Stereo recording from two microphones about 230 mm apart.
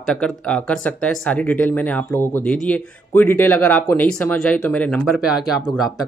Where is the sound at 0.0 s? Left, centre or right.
Centre.